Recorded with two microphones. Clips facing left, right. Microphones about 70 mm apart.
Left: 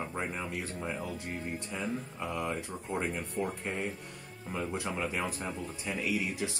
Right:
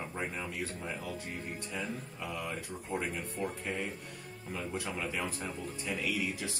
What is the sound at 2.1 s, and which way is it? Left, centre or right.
Speech, left.